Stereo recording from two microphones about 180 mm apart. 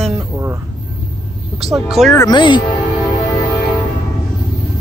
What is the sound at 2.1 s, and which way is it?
Speech, 25° left (ahead or behind).